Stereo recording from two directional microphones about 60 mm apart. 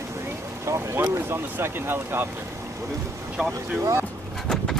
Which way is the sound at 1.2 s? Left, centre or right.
Right.